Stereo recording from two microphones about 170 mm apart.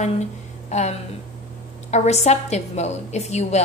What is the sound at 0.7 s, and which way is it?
A woman's voice, 40° left (ahead or behind).